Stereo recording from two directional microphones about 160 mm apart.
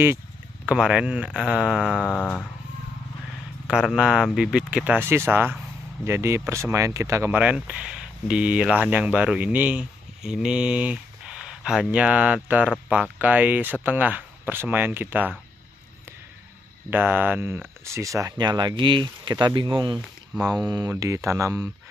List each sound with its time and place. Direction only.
0.7 s speech: 5° right (ahead or behind)
2.1 s a sound: 10° left (ahead or behind)
3.6 s speech: 5° right (ahead or behind)
16.9 s speech: 10° right (ahead or behind)